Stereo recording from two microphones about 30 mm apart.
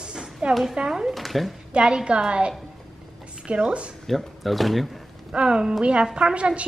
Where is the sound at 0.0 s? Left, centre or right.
Right.